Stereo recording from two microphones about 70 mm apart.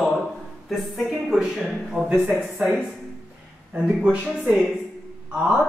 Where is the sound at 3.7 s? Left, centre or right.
Centre.